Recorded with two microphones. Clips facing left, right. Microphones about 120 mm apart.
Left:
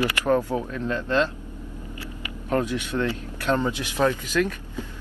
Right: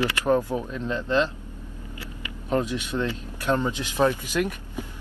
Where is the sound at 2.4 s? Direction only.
15° right (ahead or behind).